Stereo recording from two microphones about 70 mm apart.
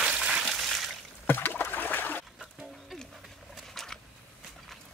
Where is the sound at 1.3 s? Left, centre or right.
Left.